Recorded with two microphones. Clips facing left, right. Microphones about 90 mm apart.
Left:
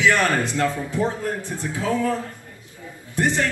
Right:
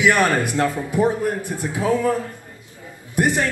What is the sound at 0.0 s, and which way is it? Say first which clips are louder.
A man's voice: right 2 dB; 15° right (ahead or behind).